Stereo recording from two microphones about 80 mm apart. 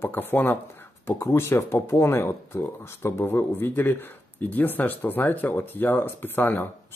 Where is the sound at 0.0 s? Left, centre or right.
Left.